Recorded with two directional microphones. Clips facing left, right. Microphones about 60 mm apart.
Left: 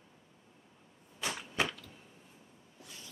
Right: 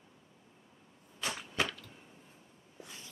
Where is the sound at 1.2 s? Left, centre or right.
Centre.